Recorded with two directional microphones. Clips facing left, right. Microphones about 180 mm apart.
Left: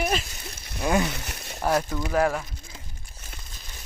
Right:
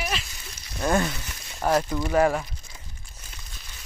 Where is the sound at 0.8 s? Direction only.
5° left (ahead or behind).